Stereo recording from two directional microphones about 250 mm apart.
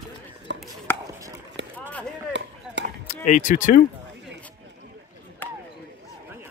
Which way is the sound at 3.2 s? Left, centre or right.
Left.